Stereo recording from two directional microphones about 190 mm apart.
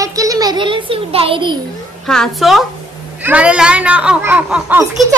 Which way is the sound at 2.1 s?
Centre (ahead or behind).